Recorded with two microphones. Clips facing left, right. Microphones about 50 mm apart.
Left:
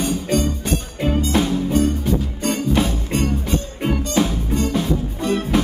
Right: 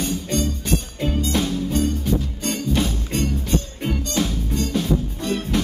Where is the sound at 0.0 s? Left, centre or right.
Centre.